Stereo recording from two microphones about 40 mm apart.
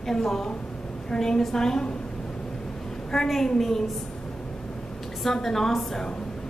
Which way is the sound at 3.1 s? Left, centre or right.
Centre.